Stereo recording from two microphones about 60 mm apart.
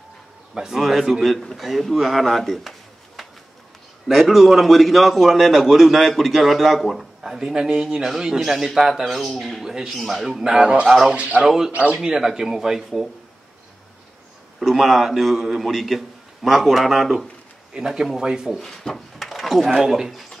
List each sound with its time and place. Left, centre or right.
0.6 s a man's voice: centre
4.1 s a man's voice: centre
10.9 s a man's voice: centre
11.1 s a man's voice: right
11.4 s speech: centre
11.7 s a man's voice: right
12.0 s speech: centre
14.6 s a man's voice: centre
17.7 s speech: centre
18.6 s speech: centre